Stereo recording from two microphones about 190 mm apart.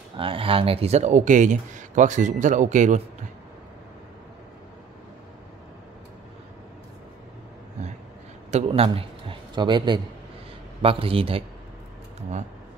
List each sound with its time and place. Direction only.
0.2 s speech: 30° right (ahead or behind)
8.5 s a man's voice: 35° right (ahead or behind)